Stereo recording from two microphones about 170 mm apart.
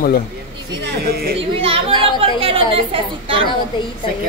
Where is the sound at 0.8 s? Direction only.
70° right (ahead or behind).